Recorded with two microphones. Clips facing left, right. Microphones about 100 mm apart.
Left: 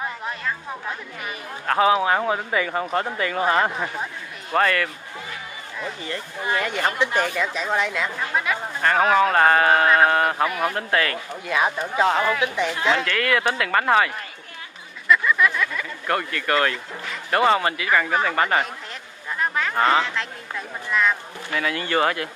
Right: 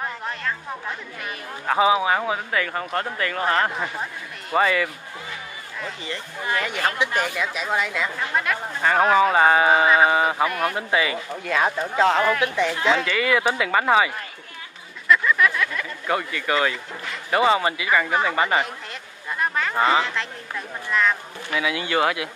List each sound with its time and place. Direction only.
0.0 s a sound: 5° left (ahead or behind)
1.7 s speech: 5° right (ahead or behind)
2.5 s speech: 15° left (ahead or behind)
4.0 s a man's voice: 5° right (ahead or behind)
6.7 s a woman's voice: 20° left (ahead or behind)
7.4 s speech: 10° right (ahead or behind)
11.4 s speech: 15° left (ahead or behind)
12.5 s speech: 15° left (ahead or behind)
12.9 s speech: 5° right (ahead or behind)
15.0 s a sound: centre (ahead or behind)
15.6 s speech: 5° left (ahead or behind)